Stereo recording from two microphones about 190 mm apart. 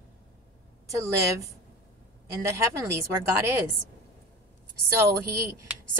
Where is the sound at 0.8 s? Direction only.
15° right (ahead or behind).